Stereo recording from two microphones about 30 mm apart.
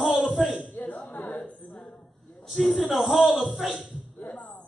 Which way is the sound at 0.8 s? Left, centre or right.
Left.